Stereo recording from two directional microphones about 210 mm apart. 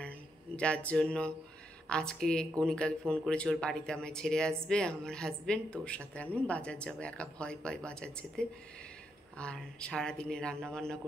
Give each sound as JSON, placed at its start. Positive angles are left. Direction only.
{"t": 0.6, "sound": "speech", "side_deg": 5}